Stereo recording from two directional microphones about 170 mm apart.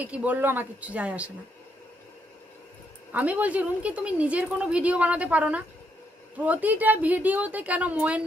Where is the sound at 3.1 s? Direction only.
10° right (ahead or behind).